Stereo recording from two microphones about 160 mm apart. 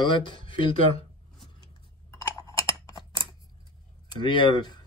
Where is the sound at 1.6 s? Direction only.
20° left (ahead or behind).